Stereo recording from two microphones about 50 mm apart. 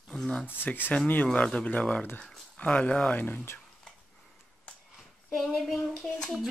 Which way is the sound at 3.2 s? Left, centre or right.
Left.